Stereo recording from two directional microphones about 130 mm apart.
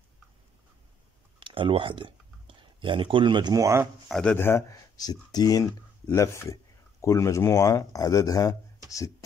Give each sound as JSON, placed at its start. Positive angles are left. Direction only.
{"t": 1.4, "sound": "speech", "side_deg": -45}
{"t": 4.1, "sound": "speech", "side_deg": 10}